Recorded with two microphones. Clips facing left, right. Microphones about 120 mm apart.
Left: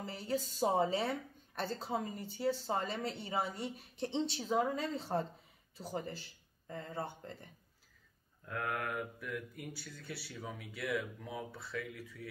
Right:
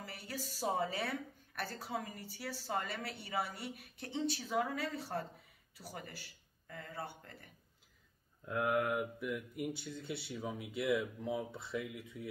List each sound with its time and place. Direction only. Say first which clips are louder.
0.0 s a woman's voice: left 8 dB; 25° left (ahead or behind)
8.5 s speech: right 5 dB; 20° right (ahead or behind)